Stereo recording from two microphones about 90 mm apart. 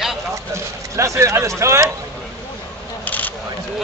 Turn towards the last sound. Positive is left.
turn(degrees=20)  # may be behind; listen again after turning